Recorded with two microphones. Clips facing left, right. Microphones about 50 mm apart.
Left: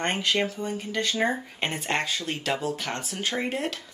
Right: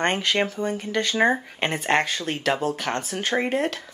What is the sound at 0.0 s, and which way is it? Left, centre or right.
Speech, right.